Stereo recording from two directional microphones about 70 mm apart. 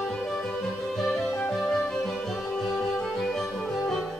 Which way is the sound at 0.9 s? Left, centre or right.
Centre.